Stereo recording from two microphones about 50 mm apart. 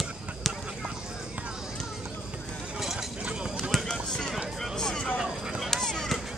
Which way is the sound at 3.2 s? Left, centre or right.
Centre.